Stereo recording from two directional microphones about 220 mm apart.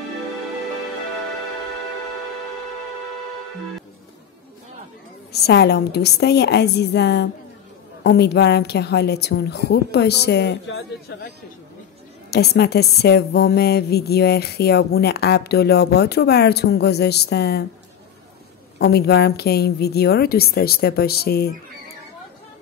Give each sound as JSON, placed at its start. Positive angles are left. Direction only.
{"t": 5.3, "sound": "a woman's voice", "side_deg": 50}
{"t": 18.8, "sound": "a woman's voice", "side_deg": 45}